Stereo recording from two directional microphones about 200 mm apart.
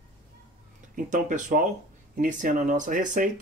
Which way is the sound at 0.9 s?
40° right (ahead or behind).